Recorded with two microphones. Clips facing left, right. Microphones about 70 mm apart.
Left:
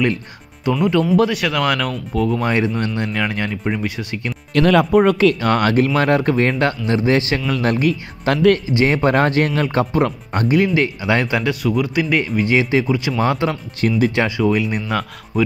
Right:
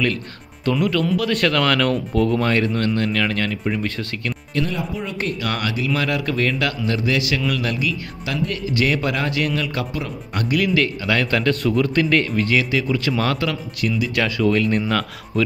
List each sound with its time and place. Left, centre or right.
0.7 s speech: left
1.3 s speech: centre
2.4 s speech: centre
4.6 s speech: left
5.4 s speech: left
8.6 s speech: left
10.4 s speech: left
14.1 s speech: left